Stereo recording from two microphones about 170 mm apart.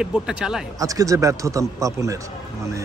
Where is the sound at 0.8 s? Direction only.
20° right (ahead or behind).